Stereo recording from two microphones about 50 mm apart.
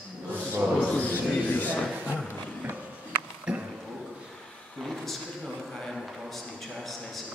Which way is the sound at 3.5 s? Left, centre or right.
Right.